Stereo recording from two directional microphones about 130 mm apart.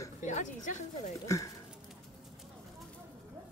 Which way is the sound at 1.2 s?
25° left (ahead or behind).